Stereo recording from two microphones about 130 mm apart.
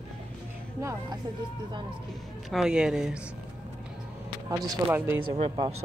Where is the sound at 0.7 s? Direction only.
25° right (ahead or behind).